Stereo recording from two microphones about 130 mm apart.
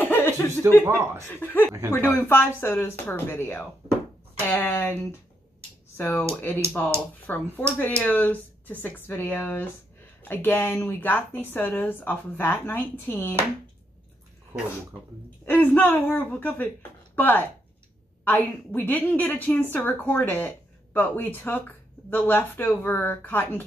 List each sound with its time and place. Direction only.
0.0 s chuckle: 15° left (ahead or behind)
0.8 s speech: 20° right (ahead or behind)
1.4 s a woman's voice: 15° left (ahead or behind)
5.9 s a woman's voice: 15° left (ahead or behind)
15.4 s a woman's voice: 15° left (ahead or behind)